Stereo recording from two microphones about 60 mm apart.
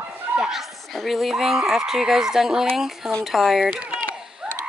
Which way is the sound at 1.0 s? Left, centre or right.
Centre.